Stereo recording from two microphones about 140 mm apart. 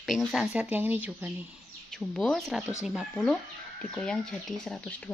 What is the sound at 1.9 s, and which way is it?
Speech, centre (ahead or behind).